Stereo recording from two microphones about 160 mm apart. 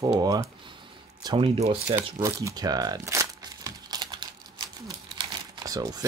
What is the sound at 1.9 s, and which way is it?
Crumpling, 20° right (ahead or behind).